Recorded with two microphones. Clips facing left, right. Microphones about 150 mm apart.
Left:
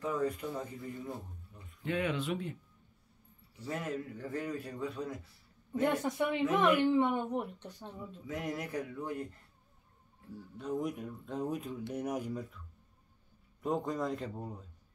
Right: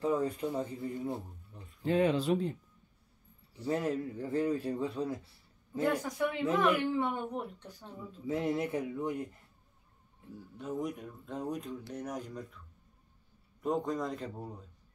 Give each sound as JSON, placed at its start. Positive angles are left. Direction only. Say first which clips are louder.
{"t": 0.0, "sound": "a man's voice", "louder": "right 3 dB", "side_deg": -25}
{"t": 3.6, "sound": "a man's voice", "louder": "right 5 dB", "side_deg": -30}
{"t": 5.7, "sound": "a child's voice", "louder": "left 1 dB", "side_deg": 25}
{"t": 8.3, "sound": "a man's voice", "louder": "right 6 dB", "side_deg": -30}
{"t": 10.6, "sound": "speech", "louder": "left 1 dB", "side_deg": 0}
{"t": 13.6, "sound": "speech", "louder": "right 1 dB", "side_deg": 0}